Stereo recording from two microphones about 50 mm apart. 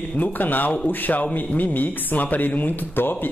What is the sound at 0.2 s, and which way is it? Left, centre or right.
Speech, left.